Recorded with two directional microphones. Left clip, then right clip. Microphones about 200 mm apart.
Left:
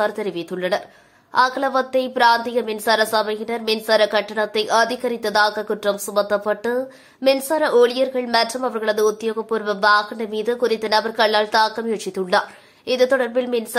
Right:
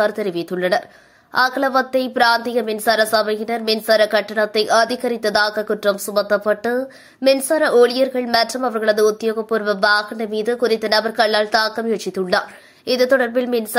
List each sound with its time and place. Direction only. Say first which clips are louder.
0.0 s speech: right 3 dB; 15° right (ahead or behind)